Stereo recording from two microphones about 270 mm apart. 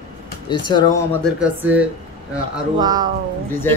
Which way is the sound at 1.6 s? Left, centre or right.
Centre.